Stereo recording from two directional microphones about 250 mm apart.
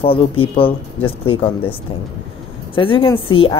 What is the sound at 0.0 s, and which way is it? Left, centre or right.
A woman's voice, left.